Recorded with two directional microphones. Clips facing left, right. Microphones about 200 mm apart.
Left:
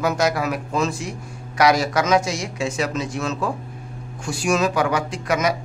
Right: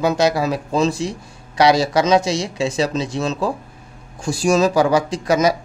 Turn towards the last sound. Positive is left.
turn(degrees=-35)  # may be behind; listen again after turning